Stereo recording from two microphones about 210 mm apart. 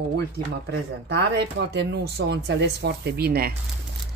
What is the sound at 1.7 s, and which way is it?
Speech, 50° right (ahead or behind).